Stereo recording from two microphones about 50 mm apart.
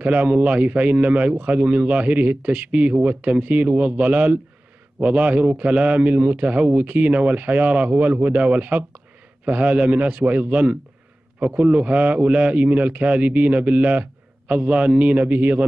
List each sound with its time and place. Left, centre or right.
0.0 s speech: right